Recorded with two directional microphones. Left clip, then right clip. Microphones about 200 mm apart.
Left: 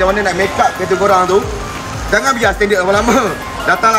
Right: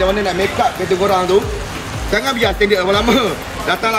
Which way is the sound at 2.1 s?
Centre (ahead or behind).